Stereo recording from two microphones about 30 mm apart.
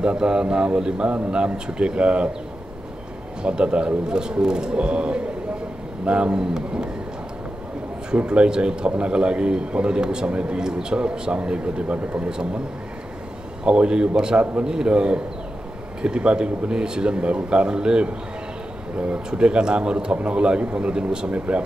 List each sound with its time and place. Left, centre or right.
0.0 s a man's voice: right
3.4 s a man's voice: right
8.3 s a man's voice: right
13.7 s a man's voice: right
19.3 s a man's voice: right